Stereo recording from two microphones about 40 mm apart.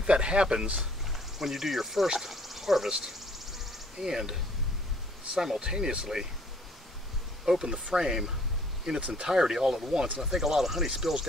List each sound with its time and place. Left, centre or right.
0.0 s speech: right
1.1 s speech: centre
2.9 s insect: centre
4.0 s speech: centre
7.4 s speech: centre